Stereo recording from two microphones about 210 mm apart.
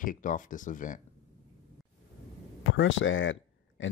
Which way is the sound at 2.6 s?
65° left (ahead or behind).